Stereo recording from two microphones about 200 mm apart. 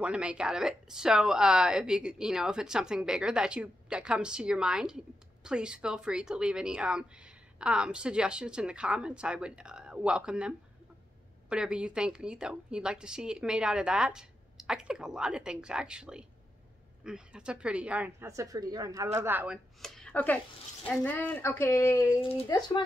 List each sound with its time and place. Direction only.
0.0 s a woman's voice: 5° right (ahead or behind); by 22.2 s 15° left (ahead or behind)
22.2 s speech: 30° left (ahead or behind)
22.5 s speech: 20° left (ahead or behind)